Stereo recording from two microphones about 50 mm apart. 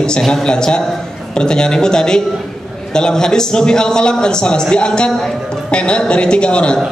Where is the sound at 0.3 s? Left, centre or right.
Centre.